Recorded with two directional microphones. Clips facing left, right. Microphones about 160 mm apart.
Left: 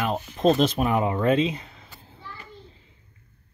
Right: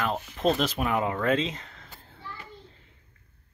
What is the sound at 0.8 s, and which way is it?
Speech, 20° left (ahead or behind).